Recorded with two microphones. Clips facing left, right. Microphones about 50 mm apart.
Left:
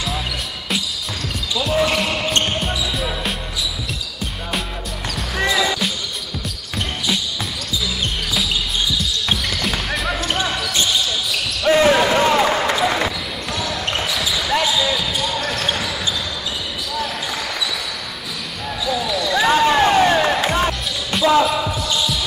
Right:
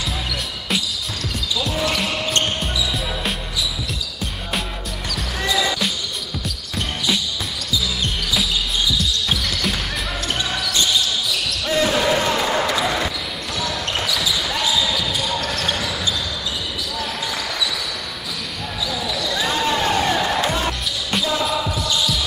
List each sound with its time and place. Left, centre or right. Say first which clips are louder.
2.0 s basketball bounce: left 2 dB; centre
5.4 s basketball bounce: left 3 dB; left
9.3 s music: left 1 dB; centre
10.0 s basketball bounce: left 4 dB; centre
11.6 s basketball bounce: left 6 dB; left
12.2 s a sound: left 5 dB; left
12.5 s basketball bounce: left 2 dB; centre
19.3 s a sound: left 7 dB; left
20.4 s music: left 3 dB; left
21.5 s basketball bounce: left 2 dB; centre